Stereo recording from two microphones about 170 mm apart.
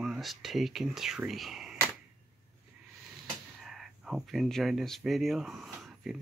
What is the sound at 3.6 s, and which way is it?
Speech, centre (ahead or behind).